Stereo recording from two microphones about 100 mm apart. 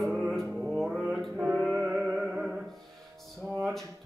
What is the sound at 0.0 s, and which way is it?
Music, centre (ahead or behind).